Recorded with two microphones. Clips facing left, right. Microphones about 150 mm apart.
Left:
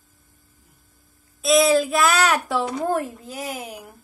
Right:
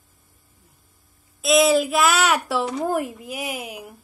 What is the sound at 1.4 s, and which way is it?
A woman's voice, centre (ahead or behind).